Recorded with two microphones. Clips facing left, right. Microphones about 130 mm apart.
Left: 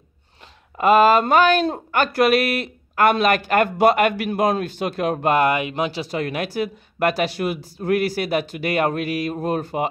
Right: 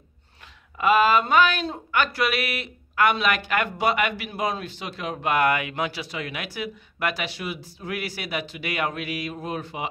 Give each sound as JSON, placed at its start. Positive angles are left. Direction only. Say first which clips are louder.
{"t": 0.7, "sound": "speech", "louder": "left 5 dB", "side_deg": 40}
{"t": 5.3, "sound": "speech", "louder": "left 1 dB", "side_deg": 25}
{"t": 6.1, "sound": "speech", "louder": "left 8 dB", "side_deg": 45}